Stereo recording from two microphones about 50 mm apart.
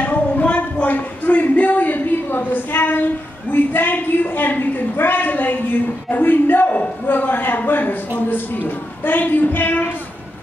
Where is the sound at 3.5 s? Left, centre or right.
Left.